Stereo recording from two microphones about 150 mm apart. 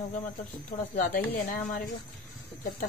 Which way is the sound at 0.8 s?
65° left (ahead or behind).